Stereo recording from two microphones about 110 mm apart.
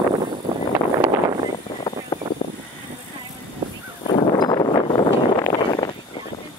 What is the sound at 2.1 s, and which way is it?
Vehicle, 35° left (ahead or behind).